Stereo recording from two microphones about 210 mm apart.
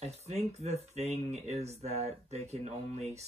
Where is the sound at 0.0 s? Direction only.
30° right (ahead or behind).